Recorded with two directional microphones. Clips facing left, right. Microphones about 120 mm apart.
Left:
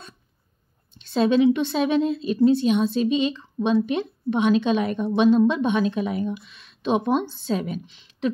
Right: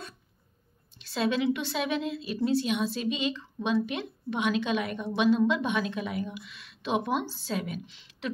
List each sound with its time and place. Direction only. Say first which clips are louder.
1.1 s a woman's voice: left 9 dB; 30° left (ahead or behind)